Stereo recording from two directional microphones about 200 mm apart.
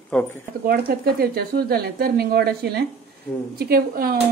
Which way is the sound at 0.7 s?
50° right (ahead or behind).